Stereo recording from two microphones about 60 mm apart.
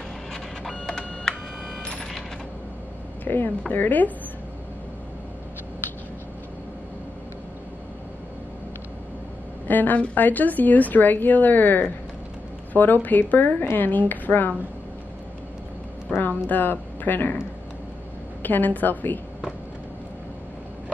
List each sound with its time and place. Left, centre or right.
0.3 s a sound: centre
1.8 s cash register: centre
3.3 s speech: left
9.7 s a woman's voice: left
16.1 s speech: left
18.4 s a woman's voice: left